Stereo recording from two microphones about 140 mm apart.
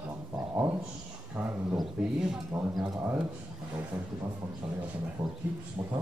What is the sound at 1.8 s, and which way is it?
Speech, 5° right (ahead or behind).